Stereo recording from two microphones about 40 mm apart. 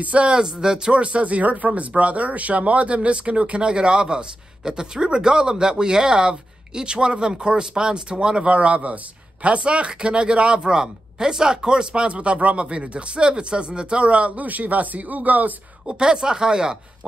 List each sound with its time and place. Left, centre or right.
0.0 s speech: right
0.3 s speech: centre
0.9 s speech: right
8.5 s speech: right
15.9 s speech: centre